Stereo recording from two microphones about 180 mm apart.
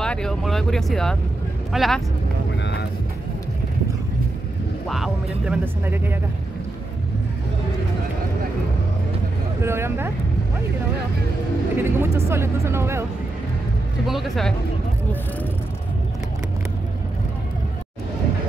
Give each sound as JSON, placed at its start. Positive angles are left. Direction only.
{"t": 0.0, "sound": "speech", "side_deg": 5}
{"t": 2.6, "sound": "vehicle", "side_deg": 70}
{"t": 4.8, "sound": "speech", "side_deg": 0}
{"t": 5.9, "sound": "speech", "side_deg": -10}
{"t": 9.6, "sound": "speech", "side_deg": -15}
{"t": 11.7, "sound": "speech", "side_deg": -15}
{"t": 14.0, "sound": "speech", "side_deg": 0}